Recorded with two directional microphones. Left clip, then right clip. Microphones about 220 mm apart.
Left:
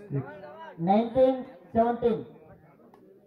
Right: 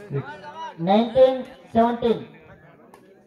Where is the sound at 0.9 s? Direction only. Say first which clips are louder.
Right 6 dB; 35° left (ahead or behind).